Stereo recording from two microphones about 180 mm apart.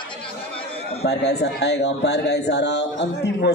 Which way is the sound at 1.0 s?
65° left (ahead or behind).